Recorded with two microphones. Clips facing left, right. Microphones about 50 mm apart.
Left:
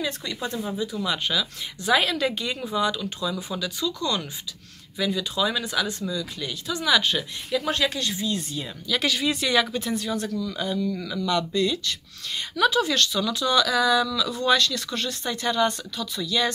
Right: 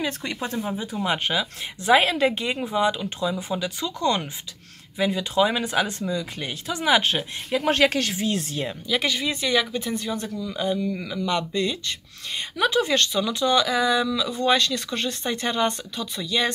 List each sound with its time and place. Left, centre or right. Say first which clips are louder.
0.0 s speech: right 1 dB; right
0.6 s speech: right 1 dB; right
3.6 s speech: right 3 dB; right
8.8 s speech: left 1 dB; centre; by 16.5 s right